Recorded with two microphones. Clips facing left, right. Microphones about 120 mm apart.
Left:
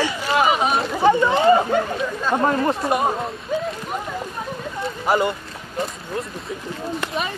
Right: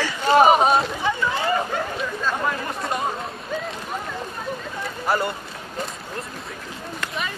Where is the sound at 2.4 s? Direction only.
30° left (ahead or behind).